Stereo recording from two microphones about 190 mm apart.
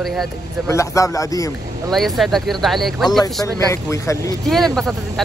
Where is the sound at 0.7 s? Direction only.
15° left (ahead or behind).